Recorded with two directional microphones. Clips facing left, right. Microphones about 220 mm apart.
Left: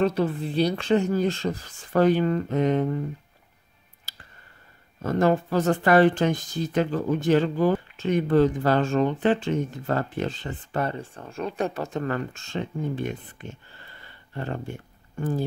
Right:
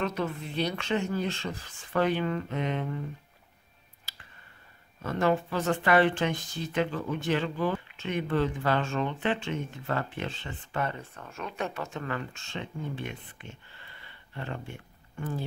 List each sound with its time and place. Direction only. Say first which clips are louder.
0.0 s speech: left 8 dB; 35° left (ahead or behind)
5.0 s speech: left 5 dB; 40° left (ahead or behind)